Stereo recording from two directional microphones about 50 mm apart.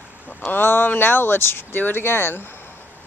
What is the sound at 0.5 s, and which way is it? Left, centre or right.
Speech, left.